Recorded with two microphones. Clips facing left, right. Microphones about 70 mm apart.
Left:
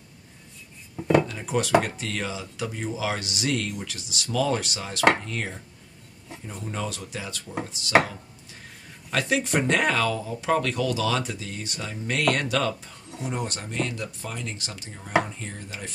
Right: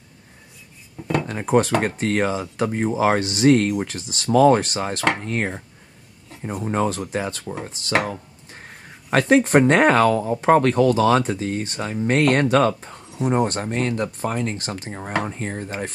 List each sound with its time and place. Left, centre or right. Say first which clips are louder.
0.9 s dishes: left 3 dB; centre
1.2 s speech: right 8 dB; right